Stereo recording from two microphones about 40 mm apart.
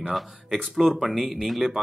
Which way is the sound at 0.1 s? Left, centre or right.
Centre.